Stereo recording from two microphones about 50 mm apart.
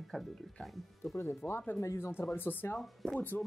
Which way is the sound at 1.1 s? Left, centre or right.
Left.